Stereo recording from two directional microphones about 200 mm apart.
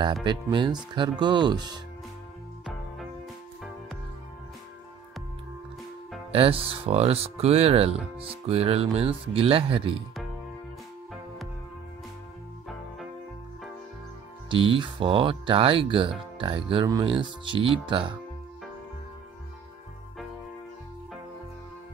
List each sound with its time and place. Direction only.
0.2 s speech: 25° right (ahead or behind)
6.3 s speech: 30° right (ahead or behind)
14.5 s speech: 25° right (ahead or behind)